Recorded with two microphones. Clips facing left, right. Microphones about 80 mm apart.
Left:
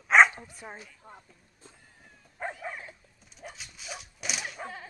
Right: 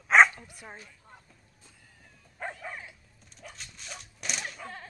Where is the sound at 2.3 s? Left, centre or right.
Centre.